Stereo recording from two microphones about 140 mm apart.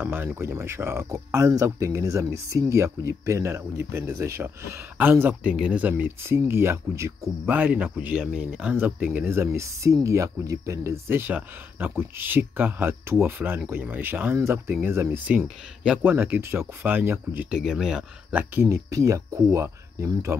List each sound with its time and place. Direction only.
0.0 s speech: 15° right (ahead or behind)